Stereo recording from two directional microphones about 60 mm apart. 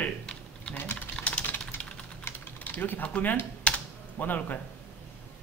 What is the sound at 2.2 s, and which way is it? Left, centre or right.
Typing, left.